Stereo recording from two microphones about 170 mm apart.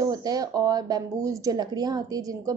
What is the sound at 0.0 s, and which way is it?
A woman's voice, 20° right (ahead or behind).